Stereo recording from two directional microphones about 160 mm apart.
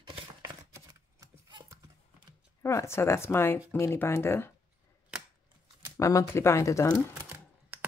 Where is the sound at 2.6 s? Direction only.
15° left (ahead or behind).